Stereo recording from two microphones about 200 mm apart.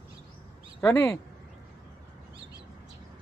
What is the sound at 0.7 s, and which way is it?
Speech, 15° left (ahead or behind).